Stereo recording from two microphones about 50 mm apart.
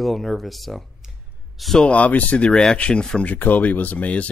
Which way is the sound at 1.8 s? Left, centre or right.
Left.